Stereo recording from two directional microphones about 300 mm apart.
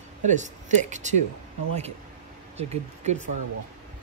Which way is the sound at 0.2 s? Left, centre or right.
Right.